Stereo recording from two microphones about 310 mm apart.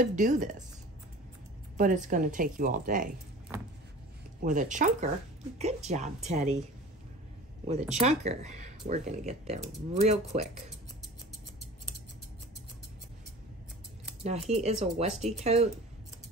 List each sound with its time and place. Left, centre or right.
0.0 s speech: right
1.8 s speech: right
4.4 s speech: right
7.9 s speech: right
14.2 s speech: right